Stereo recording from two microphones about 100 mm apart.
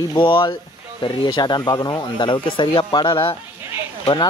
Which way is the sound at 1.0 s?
50° left (ahead or behind).